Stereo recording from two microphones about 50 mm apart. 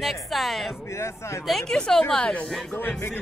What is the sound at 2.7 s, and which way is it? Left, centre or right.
Music, left.